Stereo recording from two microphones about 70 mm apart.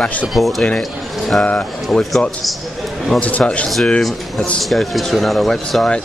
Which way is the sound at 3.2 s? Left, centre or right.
Left.